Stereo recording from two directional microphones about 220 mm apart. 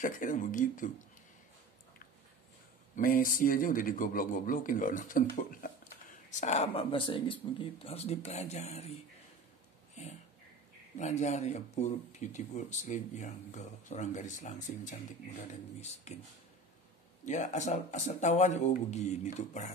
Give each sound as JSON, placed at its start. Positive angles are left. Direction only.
{"t": 0.0, "sound": "speech", "side_deg": 35}
{"t": 3.0, "sound": "speech", "side_deg": 40}
{"t": 11.0, "sound": "speech", "side_deg": 30}
{"t": 17.2, "sound": "speech", "side_deg": 35}